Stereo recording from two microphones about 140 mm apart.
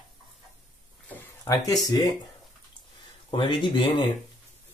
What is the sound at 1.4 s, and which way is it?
Speech, 25° left (ahead or behind).